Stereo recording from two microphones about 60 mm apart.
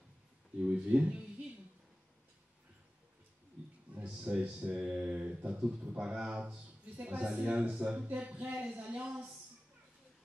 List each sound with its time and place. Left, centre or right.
0.6 s speech: right
3.9 s a sound: right
4.2 s a man's voice: right